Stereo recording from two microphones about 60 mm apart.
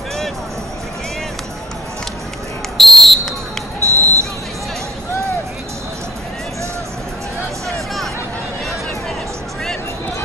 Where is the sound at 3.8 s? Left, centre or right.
Right.